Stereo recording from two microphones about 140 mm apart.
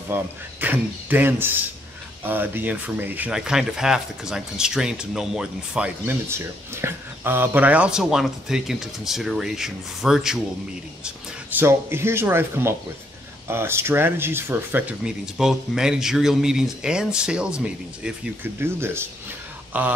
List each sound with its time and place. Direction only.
0.1 s speech: 15° right (ahead or behind)
11.1 s speech: 15° right (ahead or behind)